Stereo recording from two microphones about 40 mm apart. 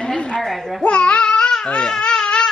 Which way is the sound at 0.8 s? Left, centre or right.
Left.